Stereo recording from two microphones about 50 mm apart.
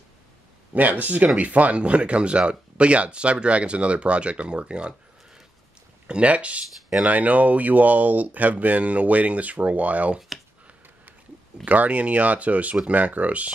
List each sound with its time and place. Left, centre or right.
0.7 s speech: right
6.0 s speech: right
11.6 s speech: right